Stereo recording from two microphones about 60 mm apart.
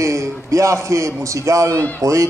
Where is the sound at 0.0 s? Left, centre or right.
Right.